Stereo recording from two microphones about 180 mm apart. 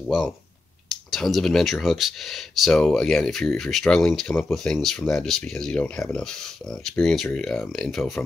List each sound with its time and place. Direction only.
1.1 s speech: centre (ahead or behind)